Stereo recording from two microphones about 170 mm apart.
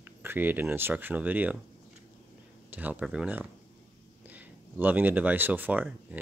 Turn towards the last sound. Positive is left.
turn(degrees=-10)  # may be behind; listen again after turning